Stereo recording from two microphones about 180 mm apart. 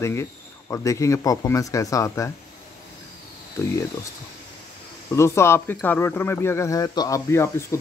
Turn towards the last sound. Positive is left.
turn(degrees=15)  # may be behind; listen again after turning